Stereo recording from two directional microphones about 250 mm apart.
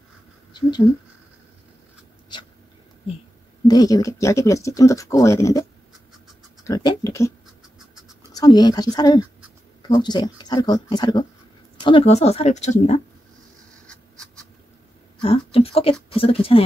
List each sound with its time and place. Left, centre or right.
0.5 s speech: centre
2.3 s a sound: centre
3.6 s speech: centre
6.7 s speech: centre
13.8 s rodents: centre
15.2 s speech: left